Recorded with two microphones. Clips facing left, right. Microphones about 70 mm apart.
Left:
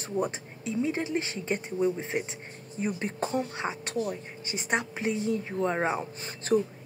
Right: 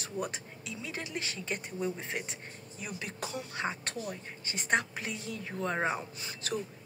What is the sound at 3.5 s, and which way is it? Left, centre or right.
A woman's voice, centre.